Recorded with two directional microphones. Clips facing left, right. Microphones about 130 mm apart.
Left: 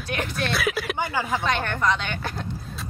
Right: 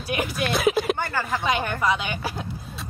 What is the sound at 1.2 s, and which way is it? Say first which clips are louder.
A woman's voice: even; centre (ahead or behind).